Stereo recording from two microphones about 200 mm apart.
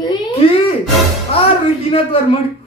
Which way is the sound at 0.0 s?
30° left (ahead or behind).